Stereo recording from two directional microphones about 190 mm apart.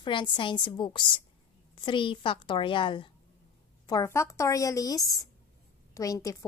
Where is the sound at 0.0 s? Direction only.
25° left (ahead or behind).